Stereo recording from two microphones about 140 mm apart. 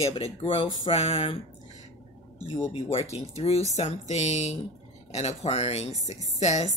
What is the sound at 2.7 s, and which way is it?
Speech, 45° left (ahead or behind).